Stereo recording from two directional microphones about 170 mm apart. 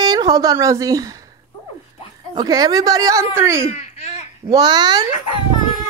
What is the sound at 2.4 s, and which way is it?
A woman's voice, 25° right (ahead or behind).